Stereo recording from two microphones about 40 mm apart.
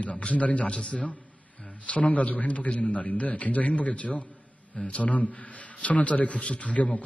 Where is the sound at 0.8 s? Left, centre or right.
Left.